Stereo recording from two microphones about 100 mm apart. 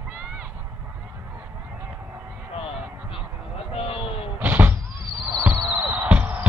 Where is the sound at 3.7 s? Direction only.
75° left (ahead or behind).